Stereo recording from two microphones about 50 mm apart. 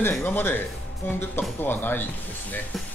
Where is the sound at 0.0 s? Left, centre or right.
Left.